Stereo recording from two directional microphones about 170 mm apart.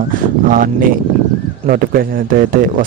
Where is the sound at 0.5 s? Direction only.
55° right (ahead or behind).